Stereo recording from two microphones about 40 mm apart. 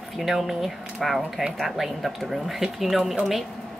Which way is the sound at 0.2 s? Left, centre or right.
Centre.